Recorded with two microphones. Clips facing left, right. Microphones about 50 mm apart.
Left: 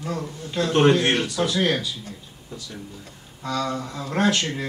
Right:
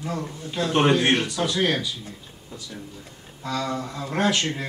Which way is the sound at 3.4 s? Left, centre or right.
Centre.